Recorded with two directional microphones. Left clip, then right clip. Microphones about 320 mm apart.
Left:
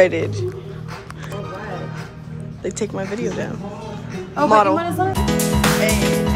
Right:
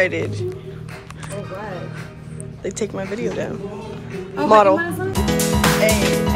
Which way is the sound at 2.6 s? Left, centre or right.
Centre.